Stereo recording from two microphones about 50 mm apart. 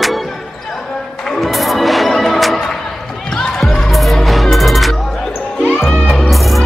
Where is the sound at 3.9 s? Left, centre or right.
Centre.